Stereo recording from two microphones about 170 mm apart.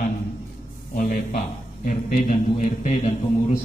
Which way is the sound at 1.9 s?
55° left (ahead or behind).